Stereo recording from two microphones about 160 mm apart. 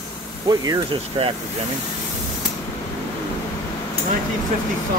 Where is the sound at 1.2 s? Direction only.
35° right (ahead or behind).